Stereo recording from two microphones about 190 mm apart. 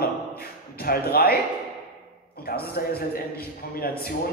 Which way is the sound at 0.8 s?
50° left (ahead or behind).